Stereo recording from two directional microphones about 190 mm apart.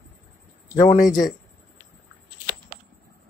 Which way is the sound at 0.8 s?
40° left (ahead or behind).